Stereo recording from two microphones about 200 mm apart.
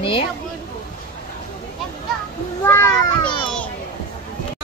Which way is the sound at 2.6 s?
10° left (ahead or behind).